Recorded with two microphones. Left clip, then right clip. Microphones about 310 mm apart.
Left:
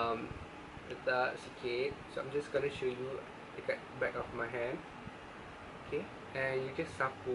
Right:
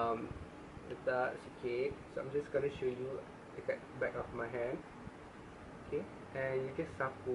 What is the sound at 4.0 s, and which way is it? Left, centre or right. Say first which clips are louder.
Speech: left 2 dB; centre.